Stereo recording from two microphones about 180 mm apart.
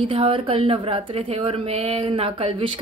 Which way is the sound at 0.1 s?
30° right (ahead or behind).